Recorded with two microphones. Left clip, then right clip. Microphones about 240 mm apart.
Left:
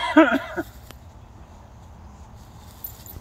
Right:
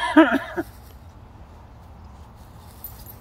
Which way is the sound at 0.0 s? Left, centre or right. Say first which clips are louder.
Even; left.